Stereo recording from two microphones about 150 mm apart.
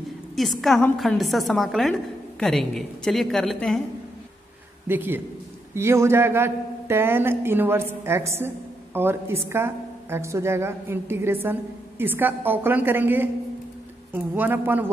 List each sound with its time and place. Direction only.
0.4 s a woman's voice: centre (ahead or behind)
4.8 s a man's voice: 15° right (ahead or behind)